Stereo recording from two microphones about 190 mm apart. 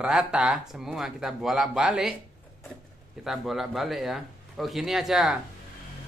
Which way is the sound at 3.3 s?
Centre (ahead or behind).